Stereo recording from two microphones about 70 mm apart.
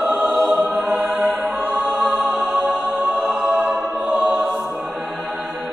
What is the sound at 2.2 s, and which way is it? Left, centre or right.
Music, right.